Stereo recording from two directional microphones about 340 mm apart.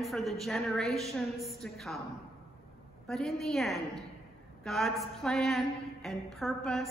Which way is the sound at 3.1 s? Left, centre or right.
Centre.